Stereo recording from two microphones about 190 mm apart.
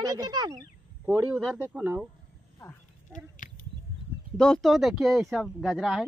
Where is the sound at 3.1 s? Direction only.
40° left (ahead or behind).